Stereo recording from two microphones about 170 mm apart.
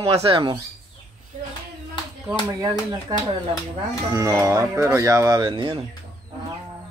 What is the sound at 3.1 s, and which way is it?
Speech, 20° right (ahead or behind).